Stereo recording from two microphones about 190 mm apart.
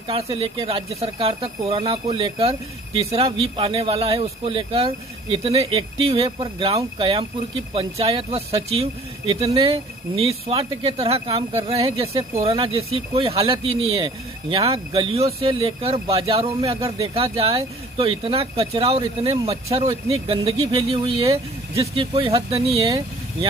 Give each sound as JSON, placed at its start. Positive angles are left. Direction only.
{"t": 0.1, "sound": "speech", "side_deg": -30}